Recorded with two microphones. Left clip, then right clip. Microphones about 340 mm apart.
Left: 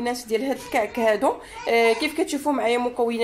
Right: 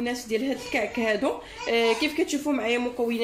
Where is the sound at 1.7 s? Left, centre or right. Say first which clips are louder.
Left 4 dB; left.